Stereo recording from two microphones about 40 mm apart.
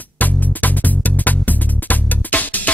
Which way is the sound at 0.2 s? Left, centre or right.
Left.